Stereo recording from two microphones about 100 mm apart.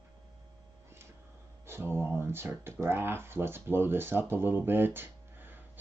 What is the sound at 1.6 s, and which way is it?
Speech, 25° right (ahead or behind).